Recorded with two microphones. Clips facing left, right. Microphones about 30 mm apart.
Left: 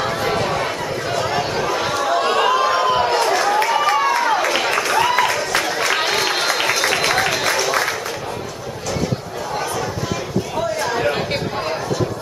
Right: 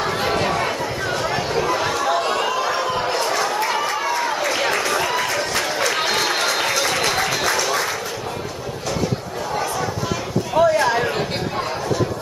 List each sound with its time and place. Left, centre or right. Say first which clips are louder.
0.0 s chatter: even; centre
2.2 s chatter: left 4 dB; left
3.3 s a sound: left 4 dB; centre
6.5 s applause: left 2 dB; centre
10.5 s a sound: right 8 dB; centre
11.0 s chatter: left 1 dB; centre